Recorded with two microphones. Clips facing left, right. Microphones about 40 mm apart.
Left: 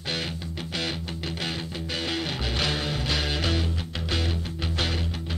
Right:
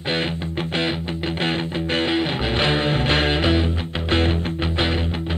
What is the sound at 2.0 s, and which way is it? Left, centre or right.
Music, right.